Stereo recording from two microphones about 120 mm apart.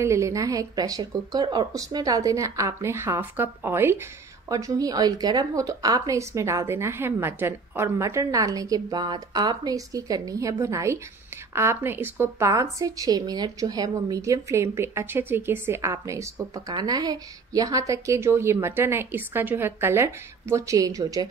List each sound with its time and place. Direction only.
0.0 s a woman's voice: 25° right (ahead or behind)